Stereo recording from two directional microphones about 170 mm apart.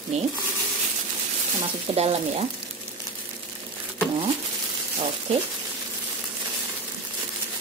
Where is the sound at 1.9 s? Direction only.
35° right (ahead or behind).